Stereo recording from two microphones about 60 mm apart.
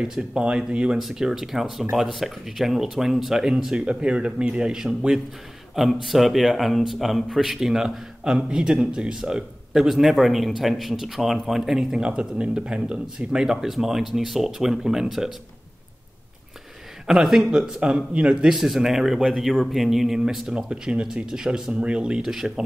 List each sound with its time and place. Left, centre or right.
0.0 s speech: centre
17.1 s speech: centre